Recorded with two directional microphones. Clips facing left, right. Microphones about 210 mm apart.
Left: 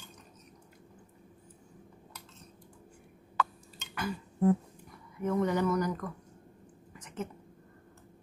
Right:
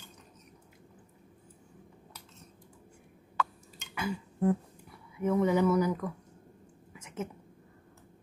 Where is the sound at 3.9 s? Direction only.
10° right (ahead or behind).